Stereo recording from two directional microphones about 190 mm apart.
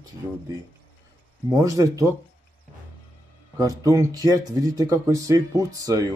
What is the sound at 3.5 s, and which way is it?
Speech, 15° right (ahead or behind).